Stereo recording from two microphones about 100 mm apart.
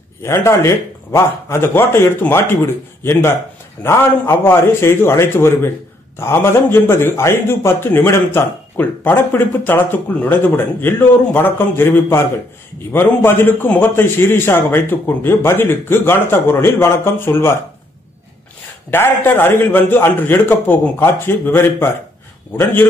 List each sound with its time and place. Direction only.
0.2 s a man's voice: 30° left (ahead or behind)
18.9 s a man's voice: 25° left (ahead or behind)